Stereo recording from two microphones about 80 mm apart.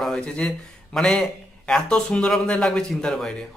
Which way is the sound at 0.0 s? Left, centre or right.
Centre.